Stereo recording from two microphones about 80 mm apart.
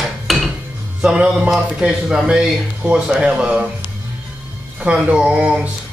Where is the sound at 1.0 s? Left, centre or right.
Centre.